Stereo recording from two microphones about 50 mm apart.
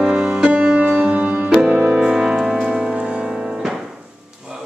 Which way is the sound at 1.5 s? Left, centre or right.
Centre.